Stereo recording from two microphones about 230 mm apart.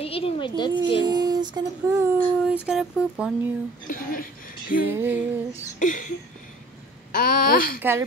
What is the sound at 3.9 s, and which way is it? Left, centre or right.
Speech, left.